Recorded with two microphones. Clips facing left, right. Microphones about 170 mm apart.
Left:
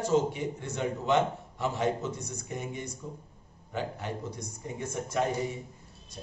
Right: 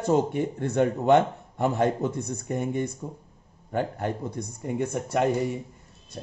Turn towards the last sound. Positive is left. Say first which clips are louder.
# right 5 dB
turn(degrees=-65)  # may be behind; listen again after turning